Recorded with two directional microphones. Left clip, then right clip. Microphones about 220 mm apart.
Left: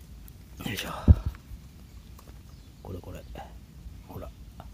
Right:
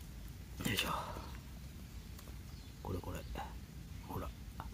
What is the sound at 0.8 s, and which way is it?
Speech, 15° left (ahead or behind).